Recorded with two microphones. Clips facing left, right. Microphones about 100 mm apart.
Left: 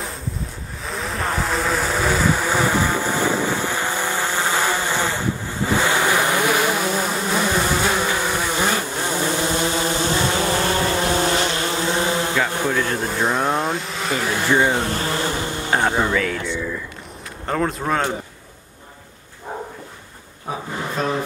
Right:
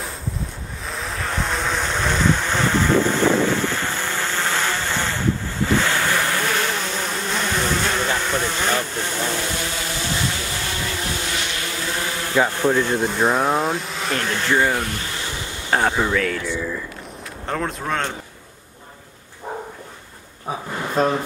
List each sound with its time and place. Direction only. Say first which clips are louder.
0.8 s vehicle: left 3 dB; centre (ahead or behind); by 5.2 s 15° left (ahead or behind)
5.7 s bee: left 2 dB; 15° left (ahead or behind)
12.6 s speech: right 3 dB; 15° right (ahead or behind)
13.0 s speech: right 2 dB; centre (ahead or behind); by 14.9 s 20° left (ahead or behind)
14.9 s bee: left 6 dB; 40° left (ahead or behind)
16.0 s speech: even; centre (ahead or behind)
21.0 s speech: right 5 dB; 40° right (ahead or behind)